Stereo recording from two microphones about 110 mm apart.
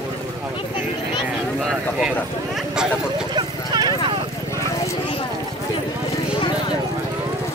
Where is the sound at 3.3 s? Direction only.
40° right (ahead or behind).